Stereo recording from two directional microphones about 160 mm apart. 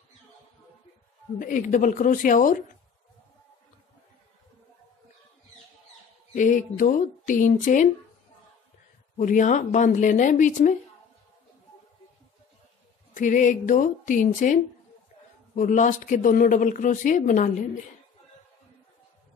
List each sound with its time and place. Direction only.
1.4 s speech: 55° left (ahead or behind)
6.3 s speech: 55° left (ahead or behind)
9.1 s speech: 55° left (ahead or behind)
13.1 s speech: 55° left (ahead or behind)